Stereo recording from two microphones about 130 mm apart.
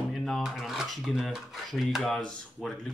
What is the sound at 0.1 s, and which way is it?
Speech, centre (ahead or behind).